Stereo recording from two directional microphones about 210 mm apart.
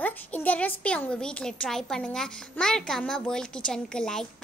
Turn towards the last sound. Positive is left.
turn(degrees=5)  # may be behind; listen again after turning